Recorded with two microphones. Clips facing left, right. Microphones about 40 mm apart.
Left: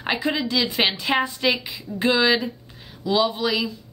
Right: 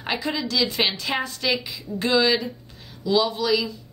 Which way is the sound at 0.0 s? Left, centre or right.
Centre.